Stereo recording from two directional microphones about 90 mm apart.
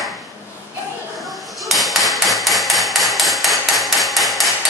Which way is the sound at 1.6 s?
Centre (ahead or behind).